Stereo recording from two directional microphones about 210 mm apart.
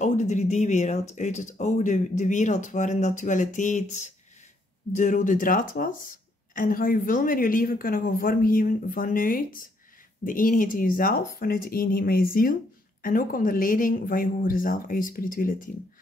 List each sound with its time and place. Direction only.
0.0 s speech: 35° left (ahead or behind)